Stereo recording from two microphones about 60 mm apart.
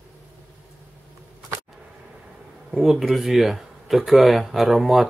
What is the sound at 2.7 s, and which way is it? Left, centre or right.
Speech, centre.